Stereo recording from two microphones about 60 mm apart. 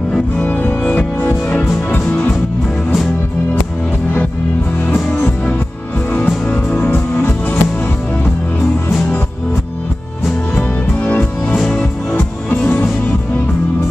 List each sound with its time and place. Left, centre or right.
0.4 s music: left
6.0 s music: left
11.7 s music: centre
12.2 s music: left